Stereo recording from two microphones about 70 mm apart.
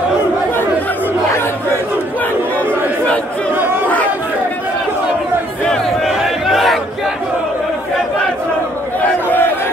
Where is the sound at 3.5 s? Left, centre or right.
Right.